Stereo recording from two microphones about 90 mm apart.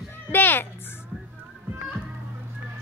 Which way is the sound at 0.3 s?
25° left (ahead or behind).